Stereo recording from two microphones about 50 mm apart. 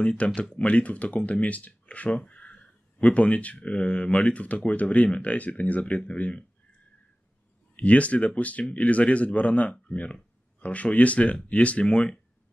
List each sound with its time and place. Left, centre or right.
0.2 s speech: left
7.7 s speech: left